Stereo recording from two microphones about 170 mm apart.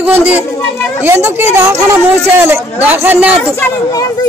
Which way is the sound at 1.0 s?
15° right (ahead or behind).